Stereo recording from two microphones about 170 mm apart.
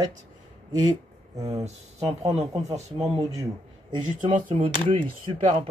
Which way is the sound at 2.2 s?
35° right (ahead or behind).